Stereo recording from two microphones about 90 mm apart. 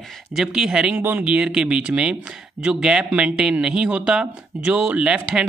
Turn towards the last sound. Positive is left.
turn(degrees=-10)  # may be behind; listen again after turning